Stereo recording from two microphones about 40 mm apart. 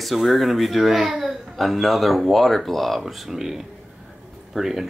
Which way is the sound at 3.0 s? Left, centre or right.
Centre.